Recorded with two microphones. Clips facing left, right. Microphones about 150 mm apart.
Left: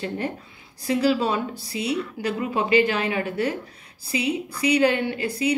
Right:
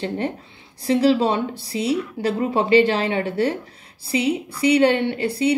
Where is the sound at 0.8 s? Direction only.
30° right (ahead or behind).